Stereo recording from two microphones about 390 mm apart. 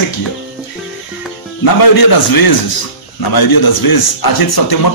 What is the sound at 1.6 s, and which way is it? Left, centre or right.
A man's voice, left.